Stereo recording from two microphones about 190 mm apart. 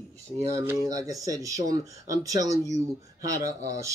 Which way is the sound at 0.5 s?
15° right (ahead or behind).